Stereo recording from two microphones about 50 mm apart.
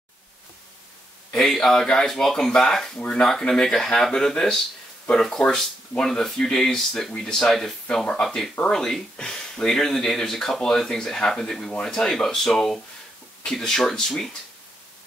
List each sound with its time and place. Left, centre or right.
1.5 s speech: centre